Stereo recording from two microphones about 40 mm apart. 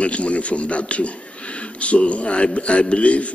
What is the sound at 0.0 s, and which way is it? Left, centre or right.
Speech, left.